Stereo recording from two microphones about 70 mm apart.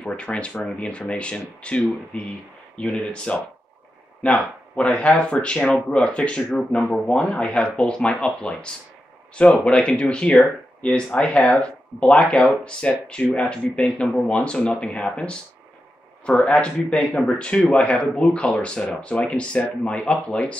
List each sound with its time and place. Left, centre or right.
0.0 s speech: centre